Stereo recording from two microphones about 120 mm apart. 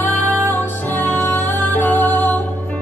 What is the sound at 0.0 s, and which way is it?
Music, 15° left (ahead or behind).